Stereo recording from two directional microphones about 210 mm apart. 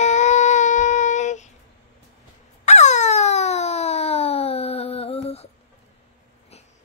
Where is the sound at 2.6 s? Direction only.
35° left (ahead or behind).